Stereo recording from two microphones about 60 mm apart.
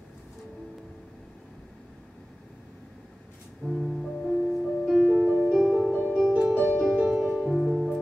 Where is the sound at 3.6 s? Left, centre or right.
Centre.